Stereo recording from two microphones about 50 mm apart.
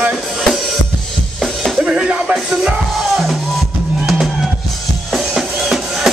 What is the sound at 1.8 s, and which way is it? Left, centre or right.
Music, right.